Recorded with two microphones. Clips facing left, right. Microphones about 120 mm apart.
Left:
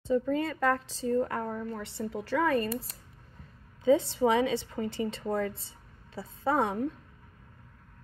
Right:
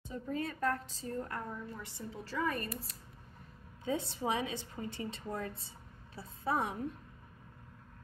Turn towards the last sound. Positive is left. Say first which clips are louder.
# left 7 dB
turn(degrees=90)